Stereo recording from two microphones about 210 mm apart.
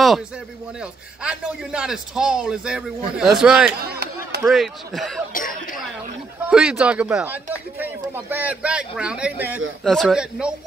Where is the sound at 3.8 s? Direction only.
50° right (ahead or behind).